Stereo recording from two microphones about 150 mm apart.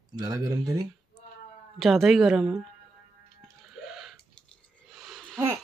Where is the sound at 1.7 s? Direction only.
Centre (ahead or behind).